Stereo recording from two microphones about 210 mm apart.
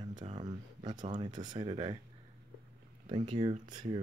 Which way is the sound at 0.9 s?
35° right (ahead or behind).